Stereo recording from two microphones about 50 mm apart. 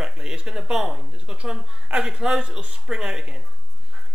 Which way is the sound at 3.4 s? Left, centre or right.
Centre.